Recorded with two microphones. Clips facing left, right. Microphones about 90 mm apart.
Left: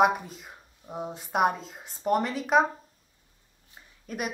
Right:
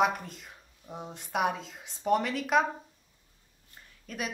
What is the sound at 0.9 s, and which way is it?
Speech, 15° left (ahead or behind).